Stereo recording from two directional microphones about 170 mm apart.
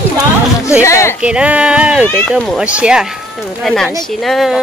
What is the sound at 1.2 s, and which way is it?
A woman's voice, 5° right (ahead or behind).